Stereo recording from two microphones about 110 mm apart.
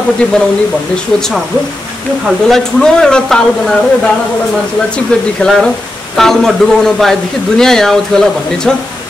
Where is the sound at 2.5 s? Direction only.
5° left (ahead or behind).